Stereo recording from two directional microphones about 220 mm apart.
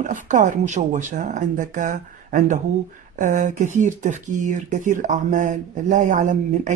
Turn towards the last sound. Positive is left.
turn(degrees=-35)  # may be behind; listen again after turning